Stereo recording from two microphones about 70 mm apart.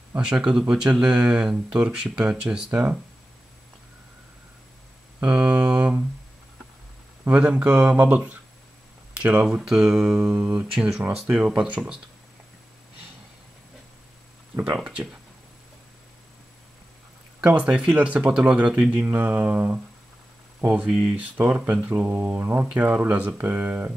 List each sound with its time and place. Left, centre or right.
0.2 s speech: centre
5.2 s speech: centre
7.2 s speech: centre
14.6 s speech: centre
17.6 s speech: centre
19.1 s speech: right
20.6 s speech: centre